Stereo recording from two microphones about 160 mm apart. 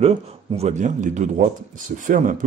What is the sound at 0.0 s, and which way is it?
Speech, 40° right (ahead or behind).